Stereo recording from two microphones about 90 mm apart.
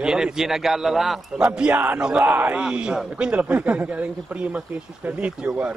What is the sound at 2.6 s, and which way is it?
Speech, 10° right (ahead or behind).